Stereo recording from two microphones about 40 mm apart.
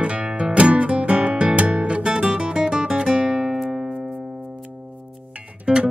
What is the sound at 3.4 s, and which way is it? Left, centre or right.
Music, centre.